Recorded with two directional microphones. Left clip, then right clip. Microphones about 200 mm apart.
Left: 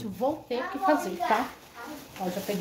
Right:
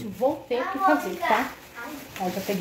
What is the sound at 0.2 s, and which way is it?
Speech, 15° left (ahead or behind).